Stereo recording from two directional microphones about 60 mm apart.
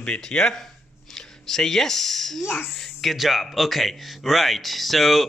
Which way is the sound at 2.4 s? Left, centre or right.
Left.